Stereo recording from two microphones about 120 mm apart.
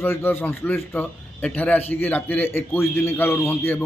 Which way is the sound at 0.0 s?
20° left (ahead or behind).